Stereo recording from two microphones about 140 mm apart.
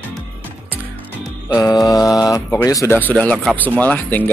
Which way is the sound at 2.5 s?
20° left (ahead or behind).